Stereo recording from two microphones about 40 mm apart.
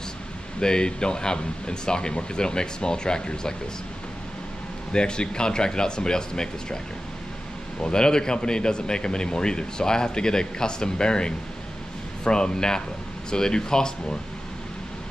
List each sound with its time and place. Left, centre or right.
0.6 s speech: left
4.9 s speech: left
7.8 s speech: centre